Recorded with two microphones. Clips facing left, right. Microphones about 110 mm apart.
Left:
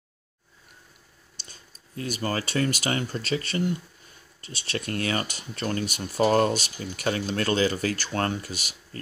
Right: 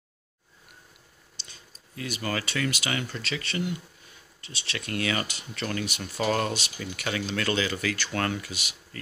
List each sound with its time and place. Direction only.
1.3 s speech: 45° left (ahead or behind)